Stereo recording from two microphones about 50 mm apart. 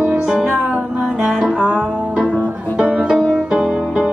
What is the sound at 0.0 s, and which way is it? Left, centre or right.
Music, centre.